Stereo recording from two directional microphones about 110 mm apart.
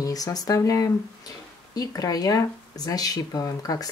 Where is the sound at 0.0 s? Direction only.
35° left (ahead or behind).